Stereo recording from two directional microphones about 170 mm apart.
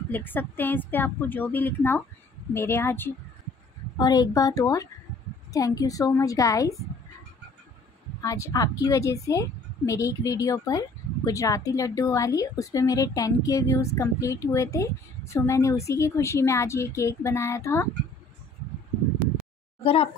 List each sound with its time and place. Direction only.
0.1 s a woman's voice: 10° left (ahead or behind)
4.0 s a woman's voice: 25° left (ahead or behind)
8.2 s a woman's voice: 20° left (ahead or behind)
19.8 s speech: 35° left (ahead or behind)